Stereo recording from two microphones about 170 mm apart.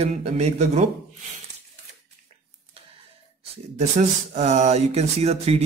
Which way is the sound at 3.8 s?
45° right (ahead or behind).